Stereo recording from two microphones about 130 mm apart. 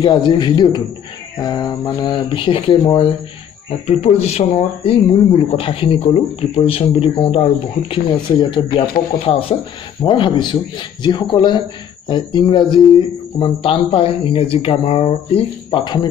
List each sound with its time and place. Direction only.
0.0 s speech: 35° left (ahead or behind)
3.8 s speech: 55° left (ahead or behind)
5.3 s speech: 45° left (ahead or behind)
7.9 s speech: 35° left (ahead or behind)
15.8 s speech: 35° left (ahead or behind)